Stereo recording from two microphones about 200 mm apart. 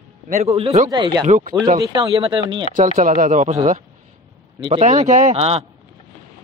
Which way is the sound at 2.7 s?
40° right (ahead or behind).